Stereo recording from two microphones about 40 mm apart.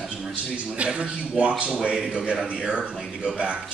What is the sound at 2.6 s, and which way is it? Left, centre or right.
Speech, right.